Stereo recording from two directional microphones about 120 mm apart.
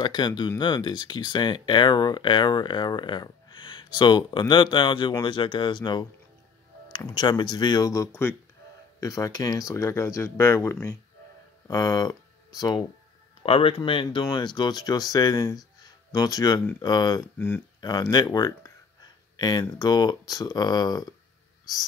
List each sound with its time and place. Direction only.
0.0 s speech: 40° left (ahead or behind); by 8.4 s 20° left (ahead or behind)
9.0 s speech: 30° left (ahead or behind)
11.6 s speech: 30° left (ahead or behind)
13.4 s speech: 50° left (ahead or behind); by 18.7 s 30° left (ahead or behind)
19.3 s a sound: 35° left (ahead or behind)
19.8 s speech: 35° left (ahead or behind)